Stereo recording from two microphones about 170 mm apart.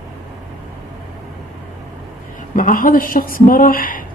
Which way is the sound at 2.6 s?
55° left (ahead or behind).